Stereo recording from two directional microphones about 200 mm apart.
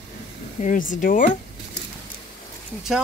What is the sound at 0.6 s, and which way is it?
Speech, 40° left (ahead or behind).